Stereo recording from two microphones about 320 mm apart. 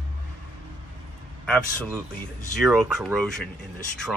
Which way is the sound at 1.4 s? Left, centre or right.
Centre.